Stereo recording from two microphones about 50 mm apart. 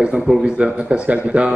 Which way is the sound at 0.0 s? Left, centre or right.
Right.